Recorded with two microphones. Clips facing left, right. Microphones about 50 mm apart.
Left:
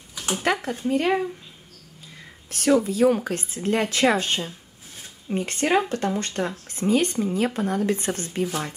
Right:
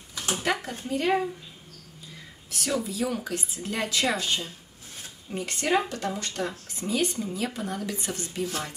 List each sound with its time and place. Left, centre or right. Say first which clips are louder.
0.4 s speech: left 6 dB; left
2.5 s speech: left 9 dB; left